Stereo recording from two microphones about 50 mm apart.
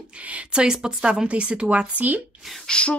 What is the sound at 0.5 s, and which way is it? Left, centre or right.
Speech, centre.